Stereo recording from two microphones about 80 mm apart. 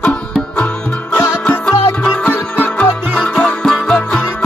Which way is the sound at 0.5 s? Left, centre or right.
Centre.